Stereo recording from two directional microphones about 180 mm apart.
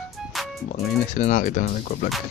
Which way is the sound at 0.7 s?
40° left (ahead or behind).